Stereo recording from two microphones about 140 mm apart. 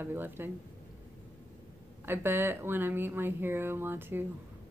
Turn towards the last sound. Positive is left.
turn(degrees=-15)  # may be behind; listen again after turning